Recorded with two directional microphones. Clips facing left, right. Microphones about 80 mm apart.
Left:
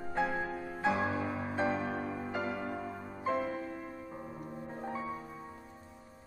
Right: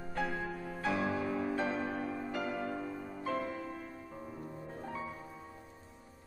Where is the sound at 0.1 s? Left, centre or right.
Left.